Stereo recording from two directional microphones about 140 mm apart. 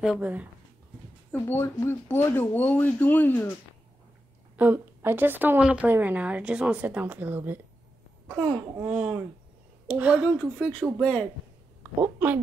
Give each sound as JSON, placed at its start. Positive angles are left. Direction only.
{"t": 0.0, "sound": "a woman's voice", "side_deg": -5}
{"t": 1.3, "sound": "speech", "side_deg": 15}
{"t": 4.6, "sound": "a woman's voice", "side_deg": -15}
{"t": 8.4, "sound": "babbling", "side_deg": -25}
{"t": 8.8, "sound": "a woman's voice", "side_deg": -5}
{"t": 10.4, "sound": "speech", "side_deg": 10}
{"t": 11.8, "sound": "speech", "side_deg": -15}